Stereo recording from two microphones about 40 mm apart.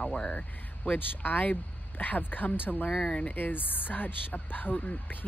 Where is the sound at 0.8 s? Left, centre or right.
Left.